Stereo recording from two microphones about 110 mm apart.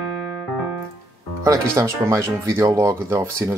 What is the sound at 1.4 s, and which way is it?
Speech, 25° right (ahead or behind).